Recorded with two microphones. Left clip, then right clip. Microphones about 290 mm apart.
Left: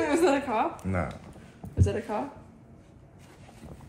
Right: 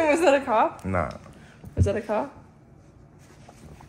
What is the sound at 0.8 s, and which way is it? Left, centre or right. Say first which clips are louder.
Speech: right 5 dB; centre.